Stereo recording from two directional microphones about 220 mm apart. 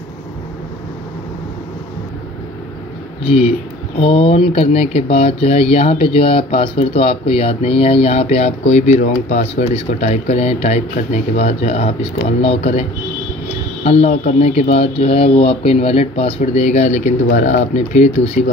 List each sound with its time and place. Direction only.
3.3 s speech: 25° left (ahead or behind)
13.8 s speech: 30° left (ahead or behind)